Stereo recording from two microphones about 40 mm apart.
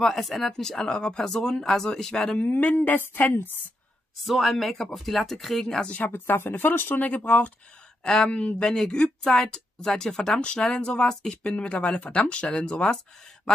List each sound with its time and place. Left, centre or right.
0.0 s speech: centre
0.5 s speech: centre
2.3 s speech: left
4.2 s speech: centre
6.0 s speech: left
7.2 s speech: left
8.0 s speech: left
8.6 s speech: centre
10.4 s speech: left